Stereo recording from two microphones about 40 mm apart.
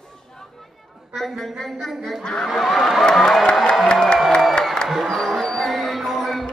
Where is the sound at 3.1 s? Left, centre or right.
Centre.